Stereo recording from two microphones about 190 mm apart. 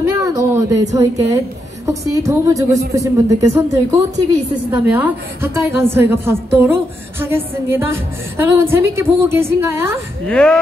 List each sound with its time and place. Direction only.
0.0 s a sound: 15° right (ahead or behind)
1.9 s a woman's voice: 15° right (ahead or behind)
10.2 s speech: 5° left (ahead or behind)